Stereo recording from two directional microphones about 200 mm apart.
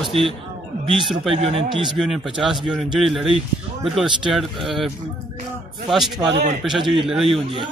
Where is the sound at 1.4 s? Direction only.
30° right (ahead or behind).